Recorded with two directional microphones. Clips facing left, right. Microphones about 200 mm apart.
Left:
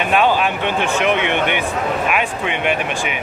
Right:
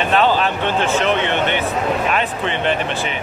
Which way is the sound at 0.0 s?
10° left (ahead or behind).